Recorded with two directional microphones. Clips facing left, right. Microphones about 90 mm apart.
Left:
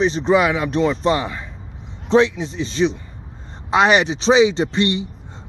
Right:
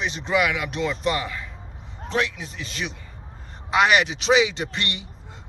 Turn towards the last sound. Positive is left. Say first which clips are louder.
# left 10 dB
turn(degrees=25)  # may be behind; listen again after turning